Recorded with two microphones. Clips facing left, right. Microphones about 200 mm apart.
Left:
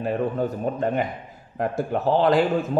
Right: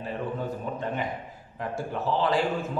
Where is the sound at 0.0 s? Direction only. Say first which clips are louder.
Left 8 dB; 55° left (ahead or behind).